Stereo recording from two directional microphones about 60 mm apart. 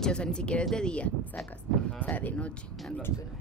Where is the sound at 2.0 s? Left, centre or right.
Left.